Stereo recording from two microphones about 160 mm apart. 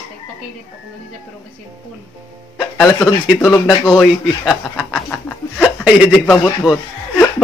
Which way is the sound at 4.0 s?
Centre (ahead or behind).